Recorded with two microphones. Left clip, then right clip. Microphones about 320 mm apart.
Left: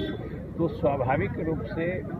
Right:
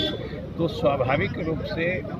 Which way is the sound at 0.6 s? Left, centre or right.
Centre.